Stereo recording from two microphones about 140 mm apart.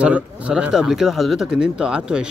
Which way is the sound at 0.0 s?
10° right (ahead or behind).